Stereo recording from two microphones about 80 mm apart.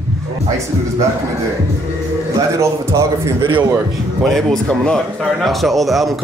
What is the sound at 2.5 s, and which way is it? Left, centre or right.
Speech, right.